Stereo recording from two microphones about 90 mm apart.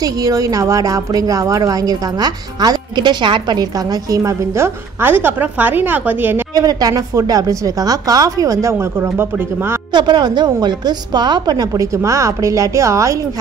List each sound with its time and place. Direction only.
0.0 s a woman's voice: 40° right (ahead or behind)
4.1 s speech: 35° right (ahead or behind)
6.5 s a woman's voice: 45° right (ahead or behind)
9.0 s speech: 25° right (ahead or behind)
9.9 s a woman's voice: 55° right (ahead or behind)
11.8 s a woman's voice: 35° right (ahead or behind)